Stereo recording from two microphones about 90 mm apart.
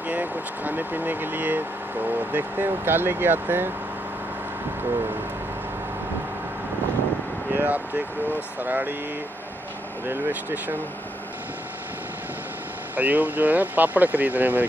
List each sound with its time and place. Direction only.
0.1 s speech: 20° right (ahead or behind)
7.5 s speech: 20° right (ahead or behind)
10.0 s speech: 20° right (ahead or behind)
12.9 s speech: 20° right (ahead or behind)